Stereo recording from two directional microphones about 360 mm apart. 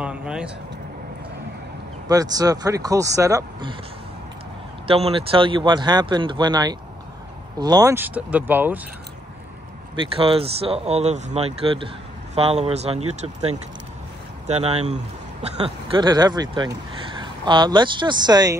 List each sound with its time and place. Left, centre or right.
0.0 s a sound: centre
2.0 s speech: centre
4.8 s speech: centre
9.9 s speech: centre
14.5 s speech: centre